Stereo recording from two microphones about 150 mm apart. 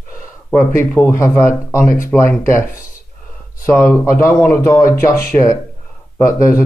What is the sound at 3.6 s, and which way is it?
Speech, 15° left (ahead or behind).